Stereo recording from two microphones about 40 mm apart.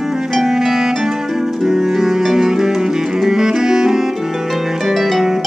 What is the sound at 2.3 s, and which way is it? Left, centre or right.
Saxophone, centre.